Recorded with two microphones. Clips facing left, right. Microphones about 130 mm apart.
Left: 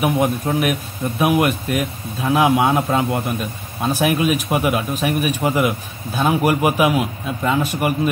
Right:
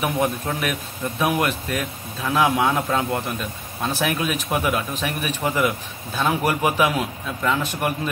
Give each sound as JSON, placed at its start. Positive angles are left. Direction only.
{"t": 0.0, "sound": "a man's voice", "side_deg": 15}